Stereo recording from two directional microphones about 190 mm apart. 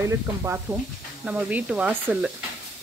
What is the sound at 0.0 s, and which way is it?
Speech, 15° right (ahead or behind).